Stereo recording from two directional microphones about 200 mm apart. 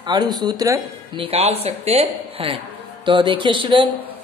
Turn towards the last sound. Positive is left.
turn(degrees=-25)  # may be behind; listen again after turning